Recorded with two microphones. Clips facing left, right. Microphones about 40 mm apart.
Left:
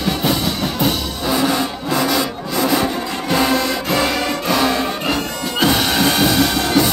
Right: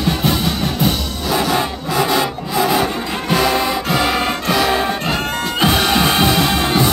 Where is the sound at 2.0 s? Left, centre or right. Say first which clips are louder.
Right 2 dB; right.